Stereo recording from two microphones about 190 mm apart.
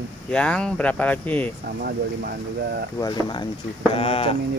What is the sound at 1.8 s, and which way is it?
Speech, 55° right (ahead or behind).